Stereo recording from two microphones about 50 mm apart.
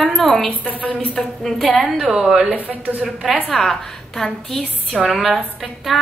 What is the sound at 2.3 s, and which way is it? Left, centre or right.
Speech, right.